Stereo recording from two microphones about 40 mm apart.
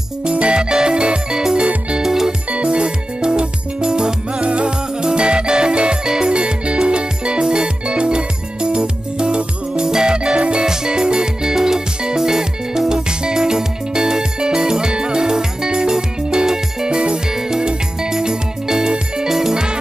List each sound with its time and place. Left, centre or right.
0.2 s music: right
2.5 s music: right; by 19.6 s centre